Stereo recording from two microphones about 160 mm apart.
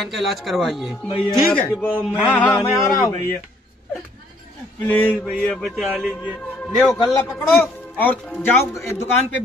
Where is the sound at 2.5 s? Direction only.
20° left (ahead or behind).